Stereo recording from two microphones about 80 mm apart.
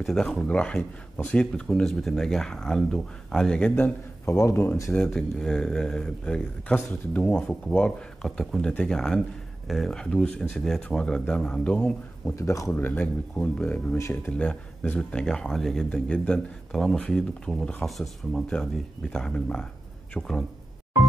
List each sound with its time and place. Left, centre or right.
0.0 s speech: centre
3.7 s a man's voice: left
5.0 s speech: centre
12.4 s speech: left
12.7 s speech: left
13.9 s speech: left
14.3 s speech: centre